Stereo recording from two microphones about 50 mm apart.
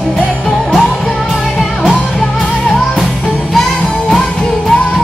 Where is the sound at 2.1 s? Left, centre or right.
Centre.